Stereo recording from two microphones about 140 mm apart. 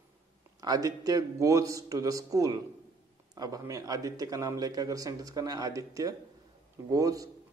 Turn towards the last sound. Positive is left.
turn(degrees=-25)  # may be behind; listen again after turning